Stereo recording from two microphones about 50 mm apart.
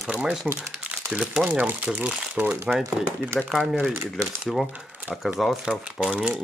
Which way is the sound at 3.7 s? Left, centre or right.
Centre.